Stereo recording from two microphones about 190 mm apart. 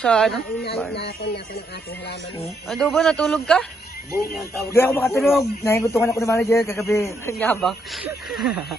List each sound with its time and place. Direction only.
0.0 s speech: 5° left (ahead or behind)
0.9 s speech: 60° left (ahead or behind)
2.7 s speech: centre (ahead or behind)
4.6 s a man's voice: 10° left (ahead or behind)